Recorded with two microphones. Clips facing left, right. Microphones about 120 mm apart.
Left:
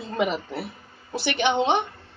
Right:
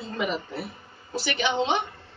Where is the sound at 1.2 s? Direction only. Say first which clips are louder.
Left 4 dB; 60° left (ahead or behind).